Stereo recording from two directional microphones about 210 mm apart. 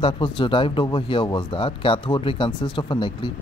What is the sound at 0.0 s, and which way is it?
Speech, 25° left (ahead or behind).